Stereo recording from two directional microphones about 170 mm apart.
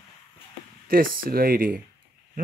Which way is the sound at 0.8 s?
60° right (ahead or behind).